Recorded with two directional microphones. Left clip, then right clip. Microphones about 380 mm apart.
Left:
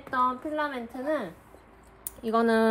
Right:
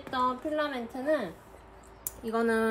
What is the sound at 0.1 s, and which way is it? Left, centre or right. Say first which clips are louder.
A woman's voice: left 2 dB; centre.